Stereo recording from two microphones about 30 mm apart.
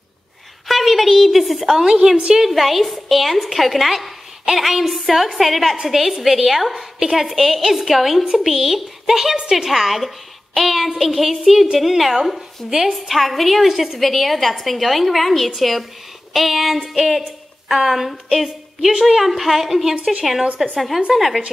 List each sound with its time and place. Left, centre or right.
0.7 s a woman's voice: centre
1.9 s a woman's voice: centre
2.5 s a woman's voice: centre
7.0 s a woman's voice: centre
9.7 s a woman's voice: centre
12.6 s a woman's voice: centre
13.1 s a woman's voice: centre
18.9 s a woman's voice: centre
19.1 s a woman's voice: centre